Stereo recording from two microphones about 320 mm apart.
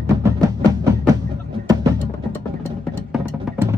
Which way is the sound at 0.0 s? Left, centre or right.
Centre.